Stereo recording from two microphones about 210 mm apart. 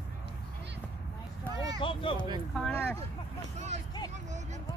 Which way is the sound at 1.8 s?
25° left (ahead or behind).